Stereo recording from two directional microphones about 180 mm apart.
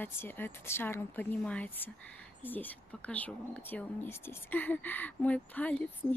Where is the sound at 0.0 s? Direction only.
10° left (ahead or behind).